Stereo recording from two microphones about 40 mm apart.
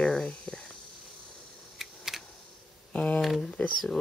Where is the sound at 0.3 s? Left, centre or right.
Left.